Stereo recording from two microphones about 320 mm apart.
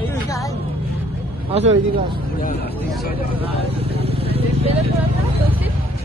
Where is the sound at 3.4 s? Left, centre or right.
Centre.